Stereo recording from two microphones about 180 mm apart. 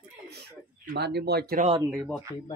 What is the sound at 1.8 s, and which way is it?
Speech, 10° right (ahead or behind).